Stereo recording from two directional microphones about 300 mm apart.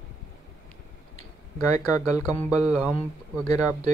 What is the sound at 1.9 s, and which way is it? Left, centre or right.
Speech, centre.